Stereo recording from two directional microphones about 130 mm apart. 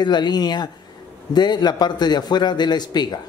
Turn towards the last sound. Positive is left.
turn(degrees=35)  # may be behind; listen again after turning